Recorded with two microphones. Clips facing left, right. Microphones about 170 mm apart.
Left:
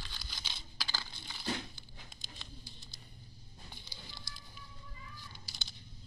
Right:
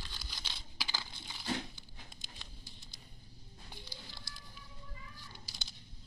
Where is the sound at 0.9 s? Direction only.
15° right (ahead or behind).